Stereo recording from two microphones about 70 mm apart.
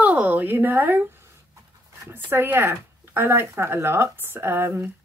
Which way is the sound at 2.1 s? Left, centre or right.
Right.